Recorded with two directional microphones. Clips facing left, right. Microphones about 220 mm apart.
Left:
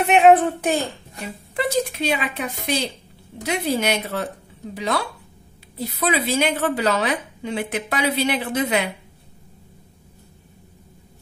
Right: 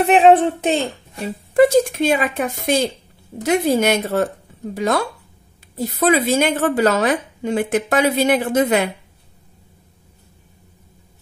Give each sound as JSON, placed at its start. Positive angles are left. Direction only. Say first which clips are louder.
{"t": 0.0, "sound": "a woman's voice", "louder": "right 2 dB", "side_deg": -30}
{"t": 1.5, "sound": "a woman's voice", "louder": "right 10 dB", "side_deg": -45}